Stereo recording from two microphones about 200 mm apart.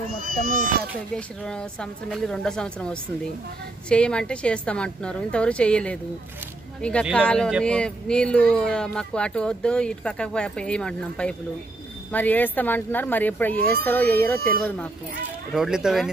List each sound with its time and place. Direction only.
0.2 s speech: 45° right (ahead or behind)
1.1 s speech: 5° left (ahead or behind)